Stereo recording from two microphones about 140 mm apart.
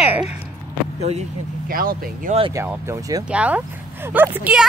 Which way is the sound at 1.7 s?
90° right.